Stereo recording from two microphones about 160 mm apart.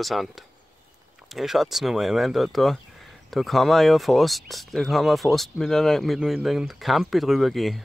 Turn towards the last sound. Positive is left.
turn(degrees=0)  # may be behind; listen again after turning